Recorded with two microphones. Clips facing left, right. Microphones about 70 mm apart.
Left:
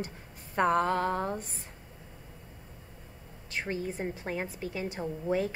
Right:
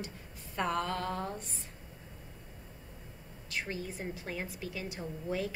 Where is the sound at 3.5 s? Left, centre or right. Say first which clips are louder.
Left 4 dB; left.